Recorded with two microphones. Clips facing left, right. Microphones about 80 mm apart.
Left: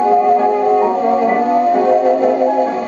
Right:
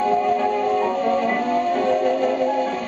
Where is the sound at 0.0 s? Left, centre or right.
Left.